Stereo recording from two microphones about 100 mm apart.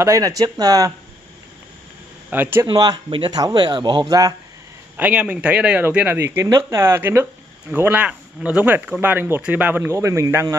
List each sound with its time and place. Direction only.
0.0 s speech: 35° right (ahead or behind)
2.3 s speech: 20° right (ahead or behind)
2.6 s speech: 40° right (ahead or behind)
4.9 s speech: 15° right (ahead or behind)